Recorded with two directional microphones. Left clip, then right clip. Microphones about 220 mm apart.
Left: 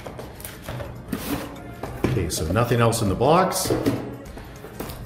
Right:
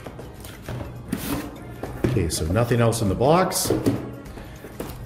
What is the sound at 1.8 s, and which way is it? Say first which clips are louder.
Speech: right 1 dB; 15° right (ahead or behind).